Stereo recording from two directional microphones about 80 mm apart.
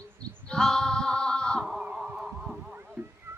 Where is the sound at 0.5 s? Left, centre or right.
Centre.